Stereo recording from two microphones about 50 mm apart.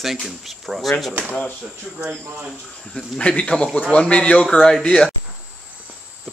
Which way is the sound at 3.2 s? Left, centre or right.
Left.